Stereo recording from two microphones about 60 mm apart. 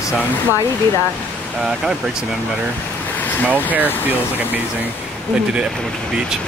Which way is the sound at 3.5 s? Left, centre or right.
Right.